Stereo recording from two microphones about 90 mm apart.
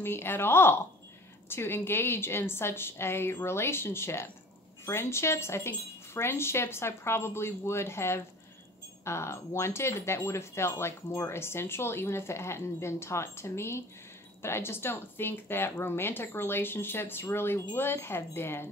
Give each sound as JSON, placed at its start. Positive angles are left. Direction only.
{"t": 0.0, "sound": "speech", "side_deg": 25}